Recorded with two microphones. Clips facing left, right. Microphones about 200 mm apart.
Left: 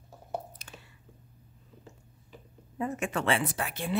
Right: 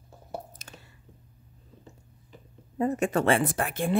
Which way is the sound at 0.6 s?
40° right (ahead or behind).